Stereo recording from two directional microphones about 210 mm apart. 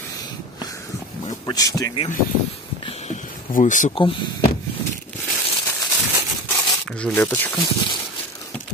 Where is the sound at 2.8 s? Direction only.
30° left (ahead or behind).